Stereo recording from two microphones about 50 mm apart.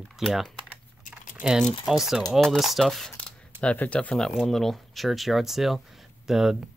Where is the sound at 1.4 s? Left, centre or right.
Centre.